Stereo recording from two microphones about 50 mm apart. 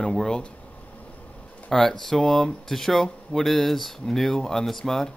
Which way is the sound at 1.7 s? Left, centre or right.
Centre.